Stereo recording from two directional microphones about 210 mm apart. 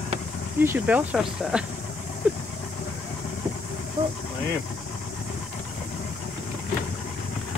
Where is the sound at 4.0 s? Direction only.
20° right (ahead or behind).